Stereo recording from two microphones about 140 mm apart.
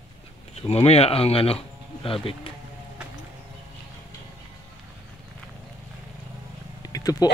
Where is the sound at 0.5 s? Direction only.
45° left (ahead or behind).